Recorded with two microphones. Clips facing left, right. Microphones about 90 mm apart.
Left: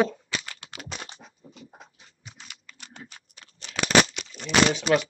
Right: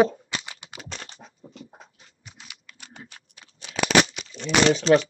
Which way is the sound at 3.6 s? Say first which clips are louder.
Right 1 dB; 15° right (ahead or behind).